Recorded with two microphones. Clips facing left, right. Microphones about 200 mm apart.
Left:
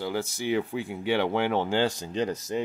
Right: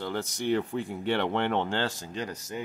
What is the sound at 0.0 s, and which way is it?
Speech, 5° left (ahead or behind).